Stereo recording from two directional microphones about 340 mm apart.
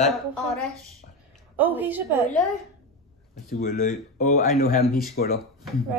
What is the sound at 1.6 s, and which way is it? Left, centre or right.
Child singing, centre.